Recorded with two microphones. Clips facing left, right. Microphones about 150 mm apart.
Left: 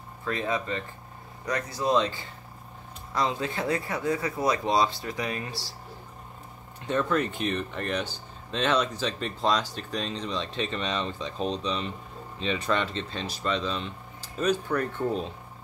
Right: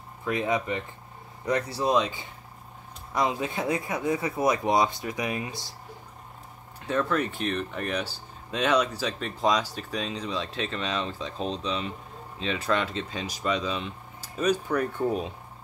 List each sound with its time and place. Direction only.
0.2 s speech: 15° right (ahead or behind)
1.4 s speech: 30° right (ahead or behind)
3.2 s speech: 20° right (ahead or behind)
6.9 s speech: 5° right (ahead or behind)